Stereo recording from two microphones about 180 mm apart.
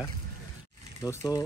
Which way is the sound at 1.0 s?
20° left (ahead or behind).